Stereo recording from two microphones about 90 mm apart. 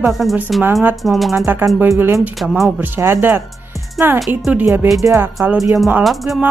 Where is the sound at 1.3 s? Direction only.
25° right (ahead or behind).